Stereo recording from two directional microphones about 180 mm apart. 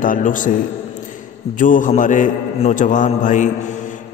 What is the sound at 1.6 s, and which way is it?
A man's voice, 45° left (ahead or behind).